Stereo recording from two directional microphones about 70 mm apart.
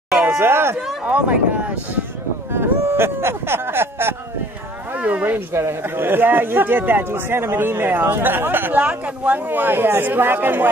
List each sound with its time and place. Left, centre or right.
0.3 s speech: right
1.0 s speech: centre
2.5 s speech: right
4.9 s speech: right
5.5 s speech: right